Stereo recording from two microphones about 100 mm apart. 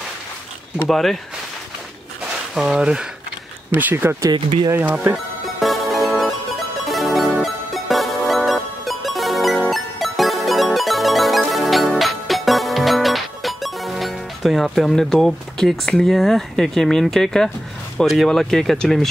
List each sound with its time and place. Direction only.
0.8 s speech: centre (ahead or behind)
2.5 s speech: 5° right (ahead or behind)
5.1 s music: centre (ahead or behind)
17.9 s speech: centre (ahead or behind)